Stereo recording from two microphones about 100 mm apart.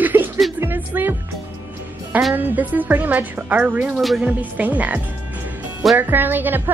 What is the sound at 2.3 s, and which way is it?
A woman's voice, 20° right (ahead or behind).